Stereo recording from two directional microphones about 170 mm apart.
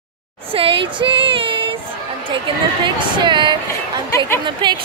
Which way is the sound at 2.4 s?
30° right (ahead or behind).